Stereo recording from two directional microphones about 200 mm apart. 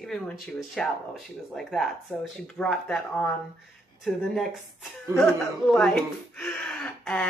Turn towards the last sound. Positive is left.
turn(degrees=0)  # may be behind; listen again after turning